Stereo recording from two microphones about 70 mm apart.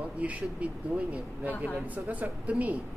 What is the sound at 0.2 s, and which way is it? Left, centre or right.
Speech, right.